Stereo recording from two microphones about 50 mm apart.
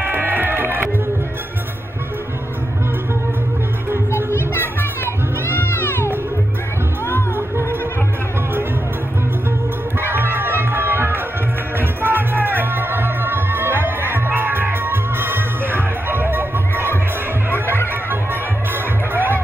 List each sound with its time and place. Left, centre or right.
0.0 s music: right
4.6 s children playing: left
9.9 s music: right
18.1 s music: right